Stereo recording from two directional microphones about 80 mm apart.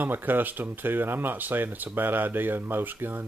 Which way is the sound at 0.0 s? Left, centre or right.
Right.